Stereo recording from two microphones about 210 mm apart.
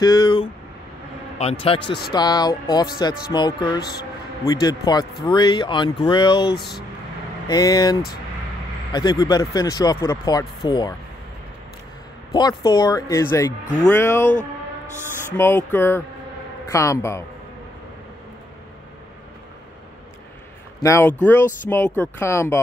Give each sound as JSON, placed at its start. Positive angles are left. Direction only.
{"t": 0.0, "sound": "speech", "side_deg": 20}
{"t": 12.3, "sound": "speech", "side_deg": 20}
{"t": 20.8, "sound": "speech", "side_deg": 10}